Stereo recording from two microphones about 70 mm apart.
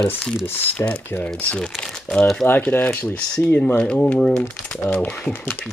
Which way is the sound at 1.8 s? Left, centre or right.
Centre.